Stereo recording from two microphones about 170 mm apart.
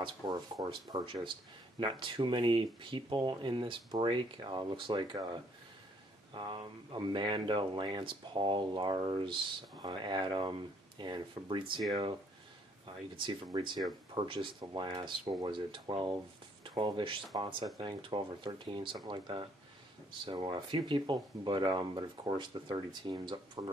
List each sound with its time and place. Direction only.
0.0 s speech: 30° right (ahead or behind)
12.8 s speech: 30° right (ahead or behind)